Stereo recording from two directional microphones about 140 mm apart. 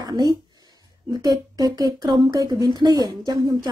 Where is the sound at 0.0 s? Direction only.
30° right (ahead or behind).